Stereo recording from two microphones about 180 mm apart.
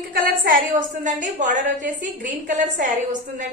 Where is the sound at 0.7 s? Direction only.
45° right (ahead or behind).